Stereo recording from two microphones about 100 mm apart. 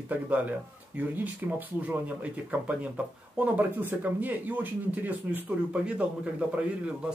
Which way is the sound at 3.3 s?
20° right (ahead or behind).